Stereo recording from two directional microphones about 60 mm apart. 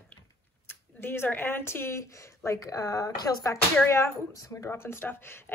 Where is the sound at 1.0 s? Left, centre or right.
Left.